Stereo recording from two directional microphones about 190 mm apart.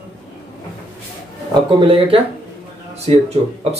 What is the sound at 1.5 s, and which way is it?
Speech, 25° right (ahead or behind).